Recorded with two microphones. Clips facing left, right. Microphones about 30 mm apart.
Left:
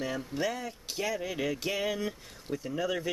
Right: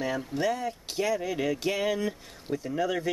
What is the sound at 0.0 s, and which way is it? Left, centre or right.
Speech, centre.